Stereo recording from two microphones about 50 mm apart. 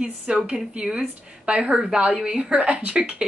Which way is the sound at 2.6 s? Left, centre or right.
Right.